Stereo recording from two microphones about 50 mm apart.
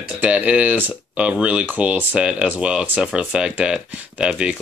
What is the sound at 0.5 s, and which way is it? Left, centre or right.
Speech, right.